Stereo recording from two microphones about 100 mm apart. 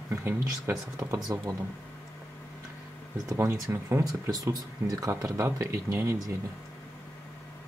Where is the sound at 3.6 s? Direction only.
35° right (ahead or behind).